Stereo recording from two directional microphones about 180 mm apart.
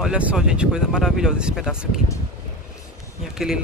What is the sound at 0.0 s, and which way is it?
Speech, 5° right (ahead or behind).